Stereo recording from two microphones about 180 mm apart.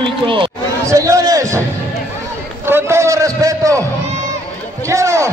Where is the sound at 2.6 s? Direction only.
15° right (ahead or behind).